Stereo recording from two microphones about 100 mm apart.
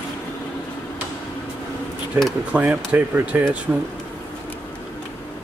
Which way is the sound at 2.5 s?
15° right (ahead or behind).